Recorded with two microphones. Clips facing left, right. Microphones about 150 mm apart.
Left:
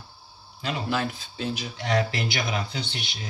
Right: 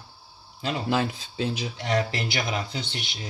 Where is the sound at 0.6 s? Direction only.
25° right (ahead or behind).